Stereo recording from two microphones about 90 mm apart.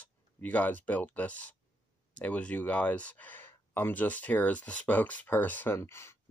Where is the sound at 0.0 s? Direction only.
15° left (ahead or behind).